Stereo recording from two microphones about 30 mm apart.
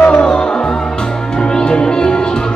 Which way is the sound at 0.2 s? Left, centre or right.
Left.